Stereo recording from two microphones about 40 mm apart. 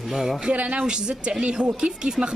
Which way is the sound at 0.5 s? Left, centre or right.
Right.